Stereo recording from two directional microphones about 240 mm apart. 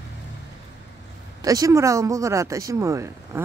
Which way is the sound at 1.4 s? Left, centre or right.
Centre.